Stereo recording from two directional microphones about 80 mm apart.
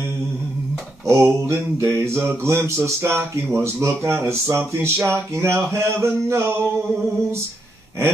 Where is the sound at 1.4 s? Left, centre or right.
Right.